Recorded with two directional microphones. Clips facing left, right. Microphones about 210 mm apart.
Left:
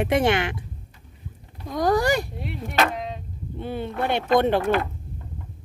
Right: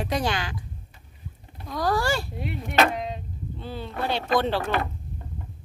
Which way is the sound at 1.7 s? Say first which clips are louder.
Left 4 dB; 20° left (ahead or behind).